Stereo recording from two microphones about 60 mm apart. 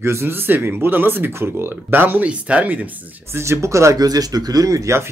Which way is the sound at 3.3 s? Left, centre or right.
Right.